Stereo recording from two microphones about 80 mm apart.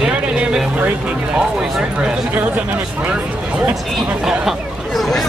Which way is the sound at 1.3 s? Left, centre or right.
Centre.